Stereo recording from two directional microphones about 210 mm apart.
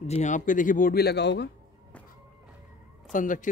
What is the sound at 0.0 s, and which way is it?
A man's voice, 35° left (ahead or behind).